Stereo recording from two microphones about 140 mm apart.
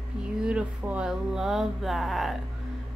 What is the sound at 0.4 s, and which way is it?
A woman's voice, 5° right (ahead or behind).